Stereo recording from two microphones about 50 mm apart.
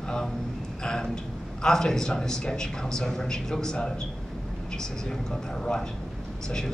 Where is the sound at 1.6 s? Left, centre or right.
Centre.